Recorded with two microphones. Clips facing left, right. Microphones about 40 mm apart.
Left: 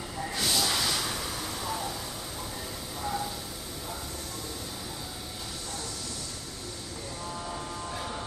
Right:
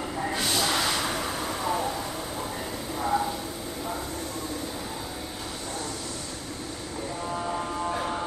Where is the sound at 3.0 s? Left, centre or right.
Right.